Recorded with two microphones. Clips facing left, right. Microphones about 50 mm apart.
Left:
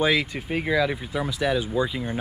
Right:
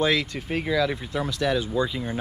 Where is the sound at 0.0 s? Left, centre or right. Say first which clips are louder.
Left 1 dB; centre.